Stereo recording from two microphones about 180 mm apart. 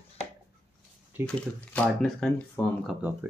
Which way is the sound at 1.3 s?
5° left (ahead or behind).